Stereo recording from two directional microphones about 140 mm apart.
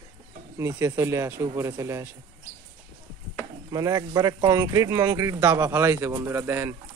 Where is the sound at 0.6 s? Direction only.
15° right (ahead or behind).